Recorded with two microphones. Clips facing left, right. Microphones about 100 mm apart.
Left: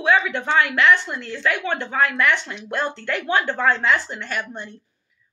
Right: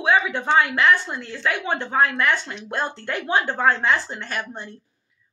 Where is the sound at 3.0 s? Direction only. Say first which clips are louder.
Even; 35° right (ahead or behind).